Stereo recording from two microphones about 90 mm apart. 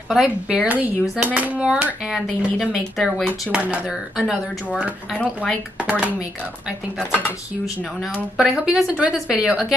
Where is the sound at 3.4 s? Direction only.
15° right (ahead or behind).